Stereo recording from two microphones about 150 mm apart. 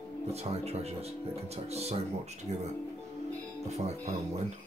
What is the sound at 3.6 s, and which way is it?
Speech, 45° right (ahead or behind).